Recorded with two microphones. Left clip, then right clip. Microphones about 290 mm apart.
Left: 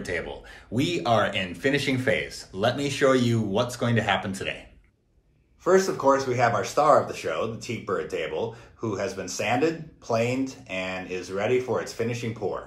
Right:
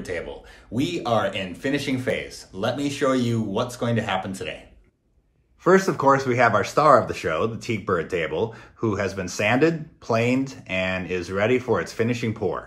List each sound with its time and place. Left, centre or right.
0.0 s speech: centre
5.6 s speech: right